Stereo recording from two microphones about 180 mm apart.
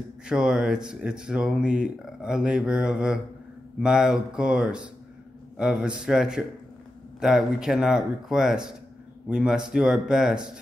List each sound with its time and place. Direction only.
0.3 s speech: 5° right (ahead or behind)